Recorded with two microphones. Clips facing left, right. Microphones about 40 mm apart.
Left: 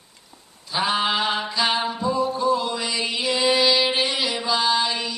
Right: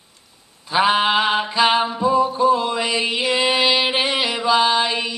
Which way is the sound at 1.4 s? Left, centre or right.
Right.